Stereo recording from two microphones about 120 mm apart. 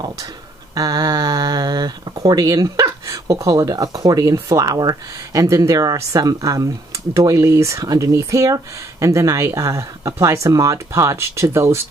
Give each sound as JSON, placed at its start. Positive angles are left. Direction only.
{"t": 0.7, "sound": "speech", "side_deg": -30}